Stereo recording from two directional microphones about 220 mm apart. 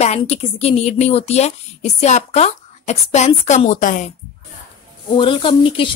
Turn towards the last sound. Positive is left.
turn(degrees=25)  # may be behind; listen again after turning